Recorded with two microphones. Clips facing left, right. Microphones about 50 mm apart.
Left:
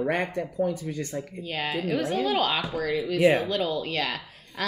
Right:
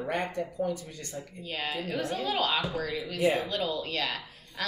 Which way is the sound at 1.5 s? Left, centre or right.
Left.